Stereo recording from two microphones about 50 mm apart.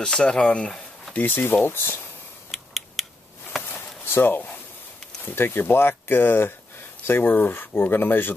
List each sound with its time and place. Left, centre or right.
0.0 s speech: centre
1.1 s speech: left
2.5 s scissors: centre
3.6 s chop: left
5.2 s speech: left